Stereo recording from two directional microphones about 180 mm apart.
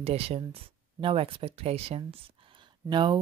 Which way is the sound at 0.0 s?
35° right (ahead or behind).